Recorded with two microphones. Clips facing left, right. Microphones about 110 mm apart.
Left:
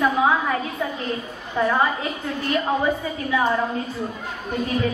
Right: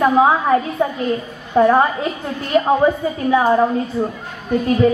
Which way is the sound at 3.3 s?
40° right (ahead or behind).